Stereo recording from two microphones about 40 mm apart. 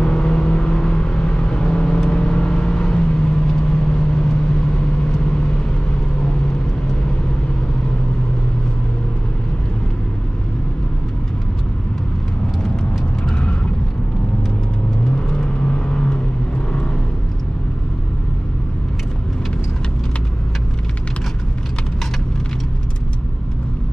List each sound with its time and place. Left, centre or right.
0.0 s vehicle: left
13.2 s vehicle: left
15.1 s vehicle: left